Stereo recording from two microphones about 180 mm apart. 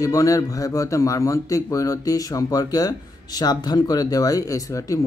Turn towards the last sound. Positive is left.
turn(degrees=20)  # may be behind; listen again after turning